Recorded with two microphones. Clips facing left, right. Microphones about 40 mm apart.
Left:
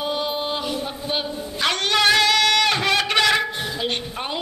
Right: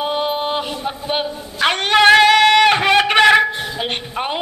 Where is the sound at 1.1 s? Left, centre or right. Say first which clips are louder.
Right 2 dB; right.